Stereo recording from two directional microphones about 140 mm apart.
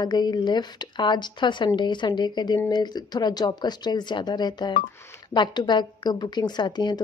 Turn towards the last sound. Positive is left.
turn(degrees=30)  # may be behind; listen again after turning